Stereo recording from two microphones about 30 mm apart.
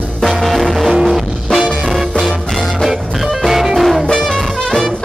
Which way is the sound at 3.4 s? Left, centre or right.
Centre.